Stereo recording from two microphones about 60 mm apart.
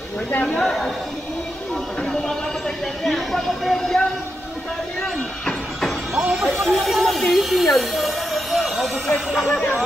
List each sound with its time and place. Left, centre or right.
0.4 s speech: left
3.0 s speech: centre
3.8 s vehicle: centre
6.1 s music: centre
6.6 s a sound: centre
9.3 s speech: centre